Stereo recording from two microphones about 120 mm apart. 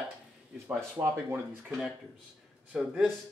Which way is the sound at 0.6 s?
25° right (ahead or behind).